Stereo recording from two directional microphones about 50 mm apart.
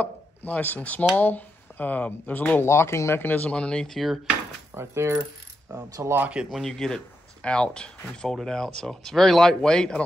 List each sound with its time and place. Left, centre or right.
0.0 s speech: left
2.6 s speech: left
3.2 s speech: left
3.4 s speech: left
3.9 s speech: centre
4.7 s speech: right
5.7 s coin: right
6.6 s speech: centre